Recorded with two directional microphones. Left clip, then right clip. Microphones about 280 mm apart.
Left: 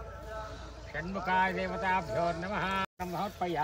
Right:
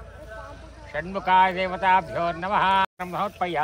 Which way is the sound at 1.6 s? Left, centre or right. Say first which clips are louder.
Right 10 dB; centre.